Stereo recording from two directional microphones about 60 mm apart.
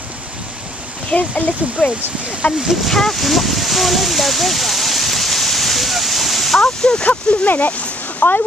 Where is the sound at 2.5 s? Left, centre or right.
Centre.